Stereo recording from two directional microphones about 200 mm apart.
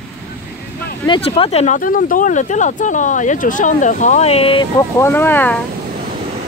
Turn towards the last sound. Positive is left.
turn(degrees=10)  # may be behind; listen again after turning